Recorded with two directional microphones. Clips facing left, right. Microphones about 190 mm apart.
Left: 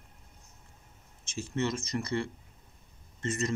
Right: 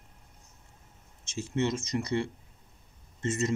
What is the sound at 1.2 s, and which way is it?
A man's voice, 20° right (ahead or behind).